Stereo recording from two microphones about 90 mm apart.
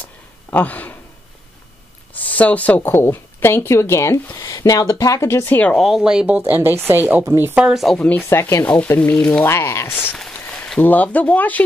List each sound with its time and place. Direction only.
0.5 s speech: 20° left (ahead or behind)
2.2 s speech: 15° left (ahead or behind)
5.8 s speech: 5° right (ahead or behind); by 7.5 s 25° right (ahead or behind)
7.5 s speech: 10° right (ahead or behind)
7.8 s speech: 5° left (ahead or behind)
8.3 s speech: 30° left (ahead or behind)
9.1 s speech: 10° left (ahead or behind)
9.4 s speech: 30° left (ahead or behind)
10.1 s a sound: 5° left (ahead or behind)
10.8 s speech: 20° left (ahead or behind)